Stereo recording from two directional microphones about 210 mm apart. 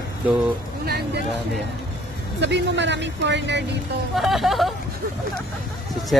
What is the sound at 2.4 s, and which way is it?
Speech, 55° right (ahead or behind).